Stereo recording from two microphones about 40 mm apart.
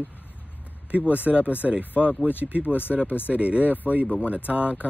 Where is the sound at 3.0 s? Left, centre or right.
Left.